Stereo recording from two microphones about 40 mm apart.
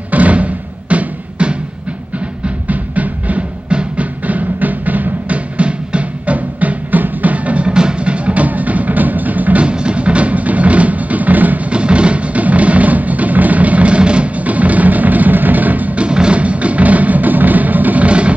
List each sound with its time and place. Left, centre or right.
0.1 s music: right
2.7 s music: right
5.6 s music: right
9.6 s music: right
11.7 s music: right
16.0 s music: right
18.0 s music: right